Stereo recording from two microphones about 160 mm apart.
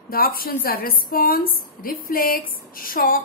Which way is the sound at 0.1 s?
65° left (ahead or behind).